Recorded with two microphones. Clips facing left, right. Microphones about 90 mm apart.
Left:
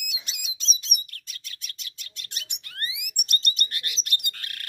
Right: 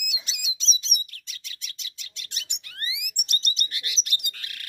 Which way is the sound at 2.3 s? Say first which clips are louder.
Left 2 dB; 45° left (ahead or behind).